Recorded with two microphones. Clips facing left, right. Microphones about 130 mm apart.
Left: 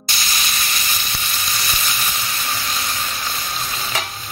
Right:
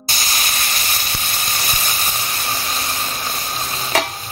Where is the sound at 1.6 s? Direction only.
40° right (ahead or behind).